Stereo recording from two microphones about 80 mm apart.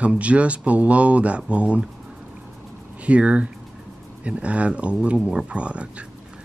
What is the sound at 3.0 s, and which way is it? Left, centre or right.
Speech, centre.